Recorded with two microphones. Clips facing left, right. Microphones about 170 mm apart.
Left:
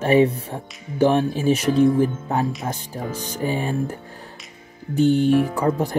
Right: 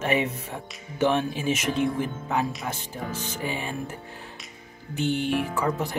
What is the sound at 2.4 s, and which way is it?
Speech, centre (ahead or behind).